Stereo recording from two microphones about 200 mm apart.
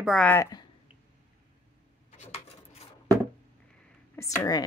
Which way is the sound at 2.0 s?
30° left (ahead or behind).